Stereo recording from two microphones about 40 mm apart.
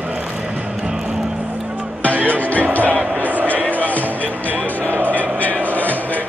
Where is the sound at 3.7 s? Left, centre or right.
Left.